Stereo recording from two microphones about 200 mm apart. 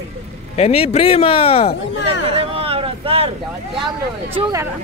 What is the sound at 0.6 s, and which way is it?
Speech, 30° left (ahead or behind).